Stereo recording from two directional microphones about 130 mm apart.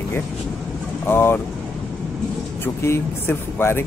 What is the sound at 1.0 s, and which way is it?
Speech, 15° left (ahead or behind).